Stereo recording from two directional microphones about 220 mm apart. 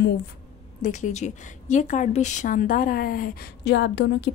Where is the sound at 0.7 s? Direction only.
35° left (ahead or behind).